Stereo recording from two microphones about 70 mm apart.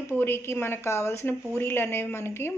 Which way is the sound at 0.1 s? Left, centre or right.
Left.